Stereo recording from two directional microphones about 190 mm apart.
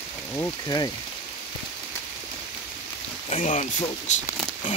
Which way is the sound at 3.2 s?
35° left (ahead or behind).